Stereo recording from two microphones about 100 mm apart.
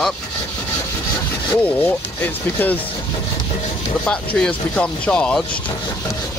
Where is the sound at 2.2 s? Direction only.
20° left (ahead or behind).